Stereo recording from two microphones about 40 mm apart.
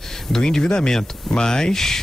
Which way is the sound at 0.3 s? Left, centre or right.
Centre.